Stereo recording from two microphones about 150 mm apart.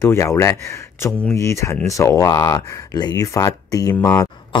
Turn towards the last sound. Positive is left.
turn(degrees=25)  # may be behind; listen again after turning